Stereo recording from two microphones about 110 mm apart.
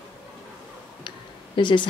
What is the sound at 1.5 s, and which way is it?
Speech, 45° left (ahead or behind).